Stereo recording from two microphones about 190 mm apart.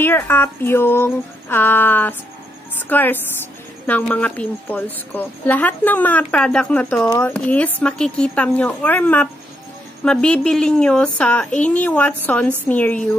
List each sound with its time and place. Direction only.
0.0 s a woman's voice: 10° left (ahead or behind)